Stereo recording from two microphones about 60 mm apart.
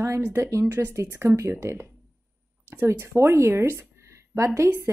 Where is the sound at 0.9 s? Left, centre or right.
Right.